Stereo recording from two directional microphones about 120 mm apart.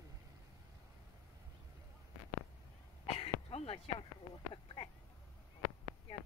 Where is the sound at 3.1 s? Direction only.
55° left (ahead or behind).